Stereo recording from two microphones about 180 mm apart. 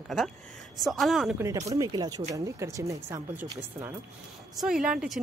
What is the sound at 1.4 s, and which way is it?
Speech, 20° right (ahead or behind).